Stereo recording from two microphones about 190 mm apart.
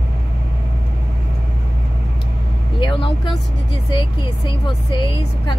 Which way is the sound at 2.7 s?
25° left (ahead or behind).